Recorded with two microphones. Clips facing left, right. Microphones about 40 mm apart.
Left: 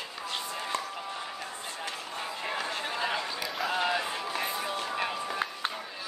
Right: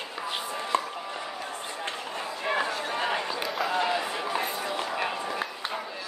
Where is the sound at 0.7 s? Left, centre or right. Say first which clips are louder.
Right 8 dB; right.